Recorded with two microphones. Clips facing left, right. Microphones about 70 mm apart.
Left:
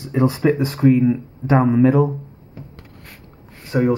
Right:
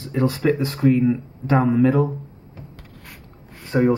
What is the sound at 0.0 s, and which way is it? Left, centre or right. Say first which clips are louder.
Speech: left 3 dB; centre.